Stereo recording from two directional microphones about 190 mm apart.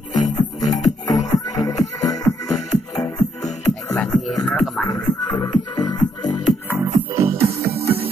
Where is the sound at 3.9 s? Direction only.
Centre (ahead or behind).